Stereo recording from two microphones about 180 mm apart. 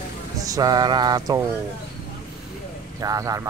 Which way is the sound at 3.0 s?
20° right (ahead or behind).